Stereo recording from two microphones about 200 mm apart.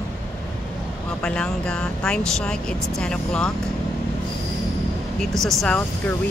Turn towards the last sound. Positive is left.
turn(degrees=5)  # may be behind; listen again after turning